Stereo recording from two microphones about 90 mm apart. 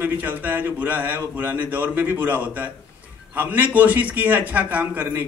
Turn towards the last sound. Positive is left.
turn(degrees=-20)  # may be behind; listen again after turning